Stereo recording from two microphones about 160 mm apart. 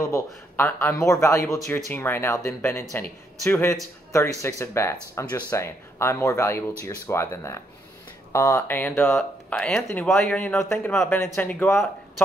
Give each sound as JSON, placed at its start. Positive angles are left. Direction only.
{"t": 0.0, "sound": "speech", "side_deg": 15}